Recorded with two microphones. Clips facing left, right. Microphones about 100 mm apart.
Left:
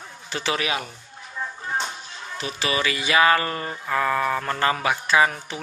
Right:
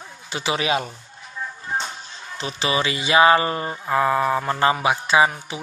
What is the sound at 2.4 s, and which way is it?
Speech, 25° right (ahead or behind).